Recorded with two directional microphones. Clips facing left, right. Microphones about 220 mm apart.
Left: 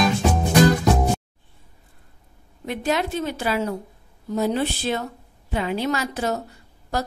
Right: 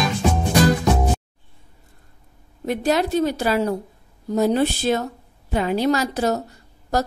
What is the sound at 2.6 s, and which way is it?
A woman's voice, 40° right (ahead or behind).